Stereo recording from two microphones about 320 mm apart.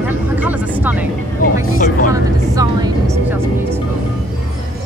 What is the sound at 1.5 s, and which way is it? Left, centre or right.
Speech, left.